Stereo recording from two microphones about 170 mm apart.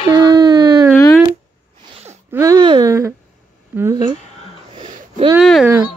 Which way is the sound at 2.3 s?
20° right (ahead or behind).